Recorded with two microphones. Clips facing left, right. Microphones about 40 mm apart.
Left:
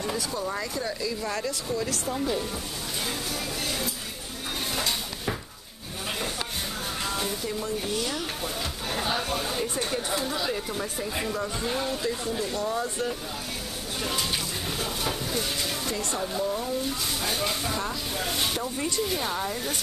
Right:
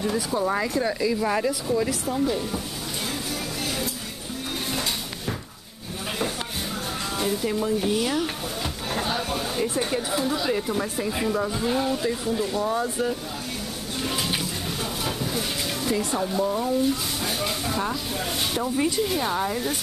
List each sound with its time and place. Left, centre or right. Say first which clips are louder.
0.3 s speech: right 6 dB; right
2.0 s speech: right 3 dB; centre
7.6 s speech: right 6 dB; centre
8.9 s speech: right 1 dB; centre
14.8 s speech: right 1 dB; centre